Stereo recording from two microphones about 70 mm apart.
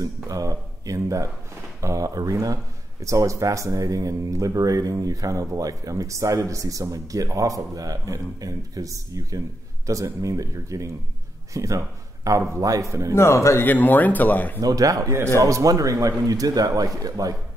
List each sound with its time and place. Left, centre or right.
0.3 s speech: right
13.1 s speech: left
13.6 s speech: left
14.6 s speech: right